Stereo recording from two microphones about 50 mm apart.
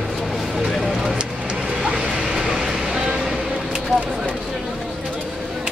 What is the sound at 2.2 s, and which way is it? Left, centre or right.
Vehicle, centre.